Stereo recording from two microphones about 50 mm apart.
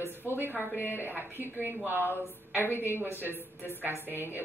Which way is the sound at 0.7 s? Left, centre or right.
Left.